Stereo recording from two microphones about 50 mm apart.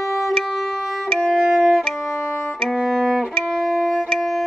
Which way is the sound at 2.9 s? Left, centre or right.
Centre.